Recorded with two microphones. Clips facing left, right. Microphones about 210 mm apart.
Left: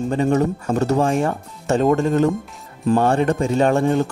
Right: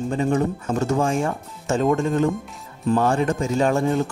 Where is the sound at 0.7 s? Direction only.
65° left (ahead or behind).